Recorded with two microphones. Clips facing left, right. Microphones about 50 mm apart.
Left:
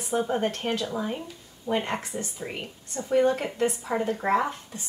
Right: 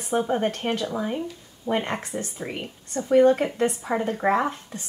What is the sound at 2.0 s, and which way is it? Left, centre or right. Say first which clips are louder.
Speech: right 2 dB; centre.